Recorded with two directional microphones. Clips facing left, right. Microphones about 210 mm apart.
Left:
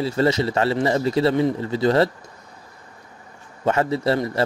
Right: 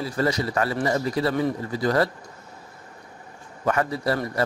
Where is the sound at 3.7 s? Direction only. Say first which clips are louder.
Left 4 dB; 25° left (ahead or behind).